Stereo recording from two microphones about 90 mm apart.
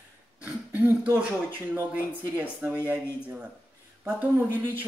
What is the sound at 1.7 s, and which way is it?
Speech, 20° right (ahead or behind).